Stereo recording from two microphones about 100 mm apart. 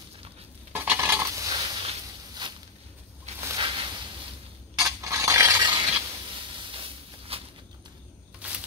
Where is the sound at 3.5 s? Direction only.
60° right (ahead or behind).